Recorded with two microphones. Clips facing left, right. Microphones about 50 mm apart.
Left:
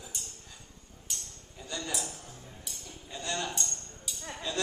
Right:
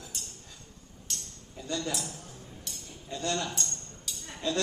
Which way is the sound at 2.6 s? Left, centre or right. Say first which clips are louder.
Right 1 dB; centre.